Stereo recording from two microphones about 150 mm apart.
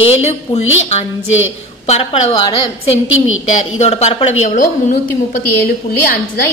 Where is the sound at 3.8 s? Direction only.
45° left (ahead or behind).